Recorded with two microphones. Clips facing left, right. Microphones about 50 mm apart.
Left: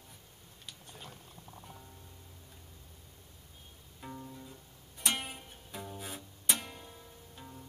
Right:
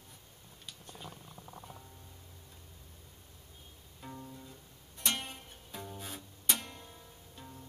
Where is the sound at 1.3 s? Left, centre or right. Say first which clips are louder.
Right 2 dB; centre.